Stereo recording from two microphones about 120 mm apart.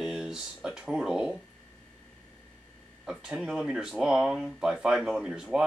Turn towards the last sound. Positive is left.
turn(degrees=-5)  # may be behind; listen again after turning